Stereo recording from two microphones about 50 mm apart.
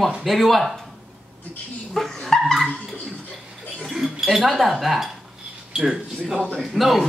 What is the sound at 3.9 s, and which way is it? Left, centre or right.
Speech, centre.